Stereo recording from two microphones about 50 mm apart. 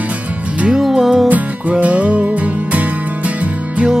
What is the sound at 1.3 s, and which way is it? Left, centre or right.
Music, right.